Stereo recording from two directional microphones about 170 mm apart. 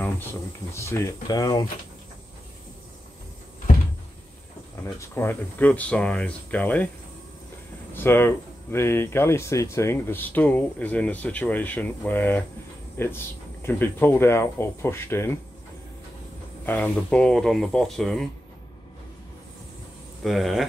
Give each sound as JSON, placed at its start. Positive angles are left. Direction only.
{"t": 0.0, "sound": "speech", "side_deg": 15}
{"t": 4.8, "sound": "speech", "side_deg": 15}
{"t": 7.9, "sound": "speech", "side_deg": 15}
{"t": 16.6, "sound": "speech", "side_deg": 10}
{"t": 20.2, "sound": "speech", "side_deg": 0}